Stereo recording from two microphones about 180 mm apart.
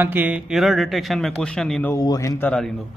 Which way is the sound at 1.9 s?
20° left (ahead or behind).